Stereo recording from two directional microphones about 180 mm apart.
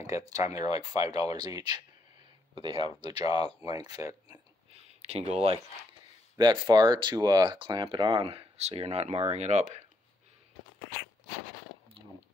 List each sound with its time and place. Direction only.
0.0 s speech: 20° right (ahead or behind)
3.2 s speech: 35° left (ahead or behind)
3.6 s speech: 20° right (ahead or behind)
5.0 s speech: 35° right (ahead or behind)